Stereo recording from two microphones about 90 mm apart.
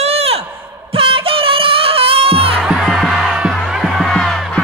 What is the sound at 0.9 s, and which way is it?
Music, 90° right.